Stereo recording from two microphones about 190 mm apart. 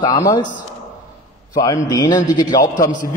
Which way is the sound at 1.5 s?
20° left (ahead or behind).